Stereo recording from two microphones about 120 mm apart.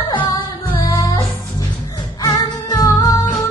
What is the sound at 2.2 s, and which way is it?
Music, 30° left (ahead or behind).